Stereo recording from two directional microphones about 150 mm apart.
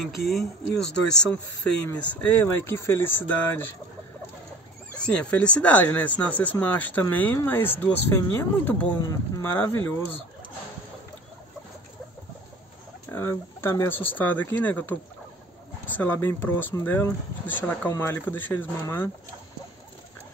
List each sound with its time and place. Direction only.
0.0 s speech: centre (ahead or behind); by 3.7 s 15° left (ahead or behind)
4.9 s speech: 5° left (ahead or behind)
8.9 s speech: 25° left (ahead or behind)
9.4 s speech: 15° left (ahead or behind)
13.1 s speech: 15° left (ahead or behind)
16.0 s speech: 15° left (ahead or behind)